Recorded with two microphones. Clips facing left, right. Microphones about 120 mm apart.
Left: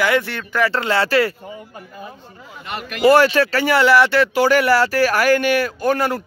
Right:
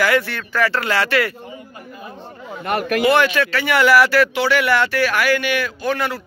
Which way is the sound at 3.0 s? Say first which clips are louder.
Left 5 dB; 40° left (ahead or behind).